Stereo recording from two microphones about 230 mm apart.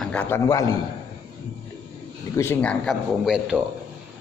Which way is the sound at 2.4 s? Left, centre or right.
Centre.